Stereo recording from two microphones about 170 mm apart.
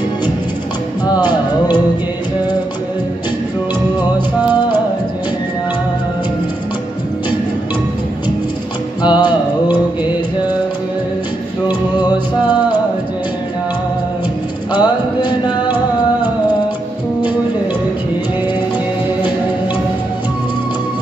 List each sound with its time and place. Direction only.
1.0 s music: 25° left (ahead or behind)
4.6 s music: 25° left (ahead or behind)
9.0 s music: 25° left (ahead or behind)
11.6 s music: 25° left (ahead or behind)
14.7 s music: 25° left (ahead or behind)